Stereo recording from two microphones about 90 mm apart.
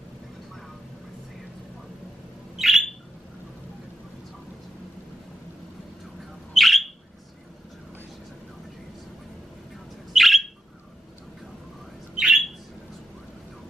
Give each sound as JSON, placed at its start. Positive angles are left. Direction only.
{"t": 2.5, "sound": "a sound", "side_deg": -5}
{"t": 6.5, "sound": "bird", "side_deg": 0}
{"t": 10.1, "sound": "bird", "side_deg": 0}
{"t": 12.2, "sound": "squawk", "side_deg": -5}